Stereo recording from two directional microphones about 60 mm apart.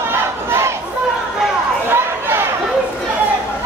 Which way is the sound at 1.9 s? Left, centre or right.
Right.